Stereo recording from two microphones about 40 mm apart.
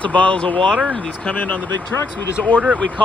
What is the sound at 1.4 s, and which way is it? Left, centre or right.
Speech, left.